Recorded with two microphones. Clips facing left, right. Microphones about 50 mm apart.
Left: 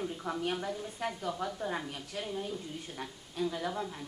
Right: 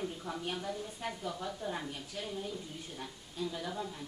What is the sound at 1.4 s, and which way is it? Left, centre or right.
Speech, left.